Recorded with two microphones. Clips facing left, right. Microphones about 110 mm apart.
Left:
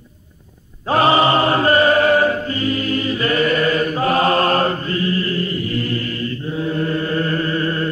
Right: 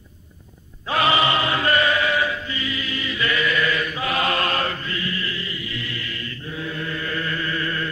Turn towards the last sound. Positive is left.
turn(degrees=35)  # may be behind; listen again after turning